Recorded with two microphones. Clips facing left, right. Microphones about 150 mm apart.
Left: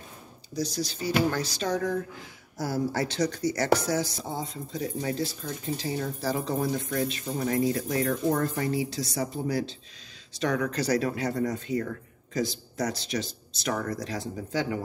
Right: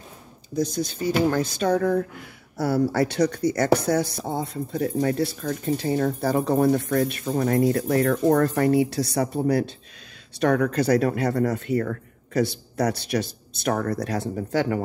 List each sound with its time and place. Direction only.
0.6 s speech: 55° right (ahead or behind)